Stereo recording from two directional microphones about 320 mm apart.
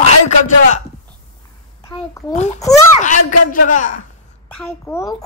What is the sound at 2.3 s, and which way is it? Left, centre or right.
A child's voice, left.